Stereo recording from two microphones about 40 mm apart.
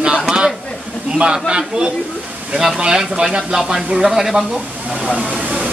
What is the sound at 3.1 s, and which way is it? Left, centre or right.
Speech, right.